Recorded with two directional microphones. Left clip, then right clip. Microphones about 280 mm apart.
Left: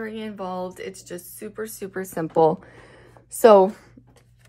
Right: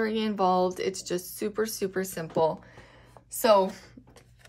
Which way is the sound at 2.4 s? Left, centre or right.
Left.